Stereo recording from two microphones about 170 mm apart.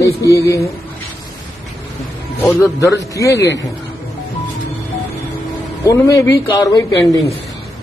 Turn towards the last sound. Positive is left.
turn(degrees=20)  # may be behind; listen again after turning